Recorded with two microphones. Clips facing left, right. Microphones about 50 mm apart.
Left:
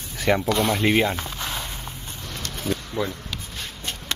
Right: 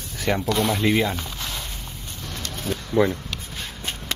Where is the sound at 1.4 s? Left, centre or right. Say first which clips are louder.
Left 2 dB; left.